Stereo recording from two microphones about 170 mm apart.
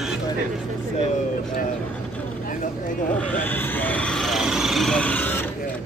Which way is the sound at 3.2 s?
10° left (ahead or behind).